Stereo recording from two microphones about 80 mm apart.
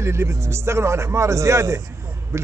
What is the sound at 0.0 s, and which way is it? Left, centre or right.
A man's voice, right.